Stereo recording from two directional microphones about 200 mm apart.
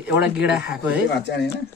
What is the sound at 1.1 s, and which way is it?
Speech, 55° left (ahead or behind).